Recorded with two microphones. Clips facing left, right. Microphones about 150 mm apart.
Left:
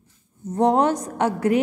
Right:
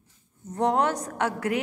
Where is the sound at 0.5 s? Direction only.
30° left (ahead or behind).